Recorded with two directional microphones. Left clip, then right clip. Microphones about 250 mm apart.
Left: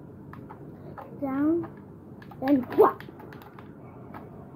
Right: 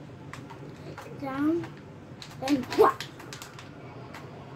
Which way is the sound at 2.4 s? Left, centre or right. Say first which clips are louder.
Left 3 dB; left.